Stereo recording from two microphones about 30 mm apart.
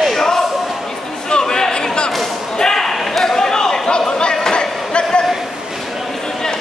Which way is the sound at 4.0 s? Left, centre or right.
Left.